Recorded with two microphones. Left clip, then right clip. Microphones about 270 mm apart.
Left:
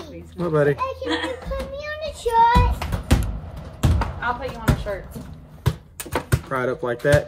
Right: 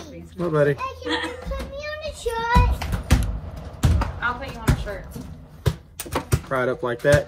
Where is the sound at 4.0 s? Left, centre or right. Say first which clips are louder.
Even; left.